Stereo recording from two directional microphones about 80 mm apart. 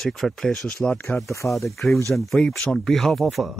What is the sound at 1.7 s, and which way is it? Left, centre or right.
Speech, centre.